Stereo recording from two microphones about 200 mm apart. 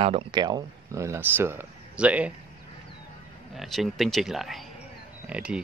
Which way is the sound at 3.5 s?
Centre (ahead or behind).